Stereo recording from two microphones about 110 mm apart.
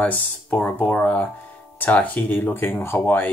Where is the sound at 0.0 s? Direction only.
15° left (ahead or behind).